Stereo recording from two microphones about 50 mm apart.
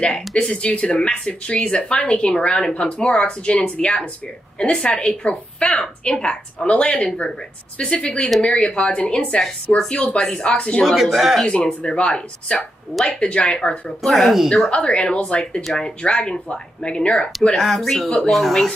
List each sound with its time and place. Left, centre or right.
0.0 s a woman's voice: centre
10.8 s speech: centre
11.4 s a woman's voice: left
14.0 s speech: centre
14.7 s a woman's voice: left
17.6 s speech: centre